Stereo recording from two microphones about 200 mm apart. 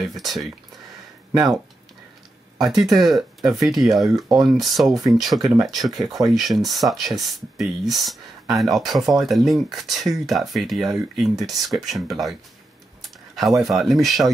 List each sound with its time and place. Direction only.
0.0 s speech: centre (ahead or behind)
1.3 s speech: 15° right (ahead or behind)
2.6 s speech: centre (ahead or behind)
13.6 s speech: centre (ahead or behind)